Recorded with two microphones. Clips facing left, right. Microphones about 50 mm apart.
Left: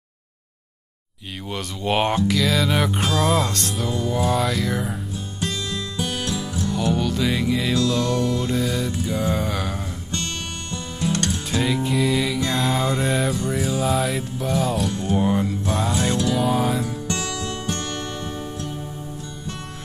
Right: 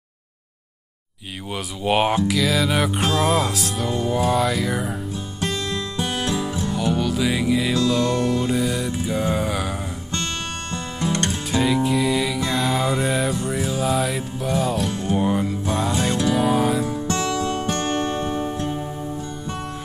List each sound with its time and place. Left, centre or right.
1.5 s music: centre
5.7 s music: right
6.7 s music: centre
8.2 s music: right
8.5 s music: centre
10.7 s music: right
11.5 s music: centre
17.4 s music: right